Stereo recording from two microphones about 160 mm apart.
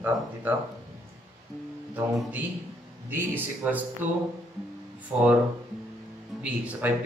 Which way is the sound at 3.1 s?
10° right (ahead or behind).